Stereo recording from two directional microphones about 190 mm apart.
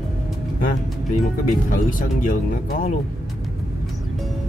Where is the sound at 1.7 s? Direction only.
45° left (ahead or behind).